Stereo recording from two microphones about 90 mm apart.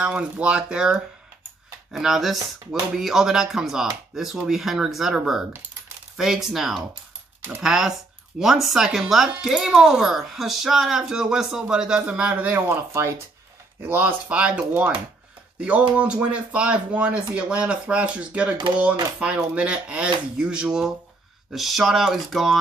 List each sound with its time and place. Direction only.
0.0 s speech: 10° right (ahead or behind)
12.5 s speech: 30° right (ahead or behind); by 22.6 s centre (ahead or behind)